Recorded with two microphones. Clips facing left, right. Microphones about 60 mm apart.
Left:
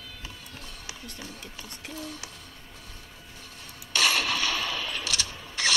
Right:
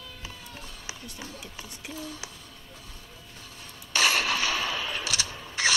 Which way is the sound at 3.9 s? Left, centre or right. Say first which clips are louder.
Right 1 dB; centre.